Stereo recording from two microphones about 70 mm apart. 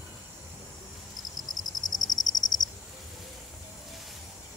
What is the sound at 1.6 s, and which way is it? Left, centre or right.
Cricket, left.